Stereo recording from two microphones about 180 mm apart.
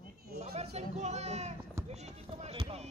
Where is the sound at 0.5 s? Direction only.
35° right (ahead or behind).